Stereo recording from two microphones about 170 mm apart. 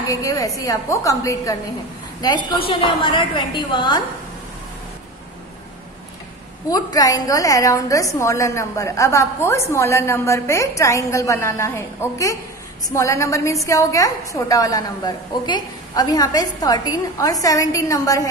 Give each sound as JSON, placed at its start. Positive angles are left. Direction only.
{"t": 0.1, "sound": "a woman's voice", "side_deg": 20}
{"t": 6.7, "sound": "a woman's voice", "side_deg": 20}